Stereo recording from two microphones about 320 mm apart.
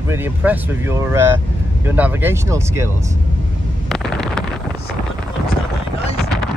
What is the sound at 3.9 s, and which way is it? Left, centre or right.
Wind noise, centre.